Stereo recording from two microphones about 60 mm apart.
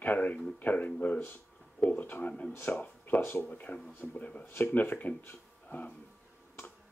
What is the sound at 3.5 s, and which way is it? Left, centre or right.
Speech, left.